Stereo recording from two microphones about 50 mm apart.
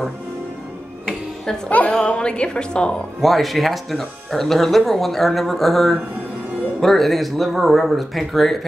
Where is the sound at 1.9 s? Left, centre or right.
Left.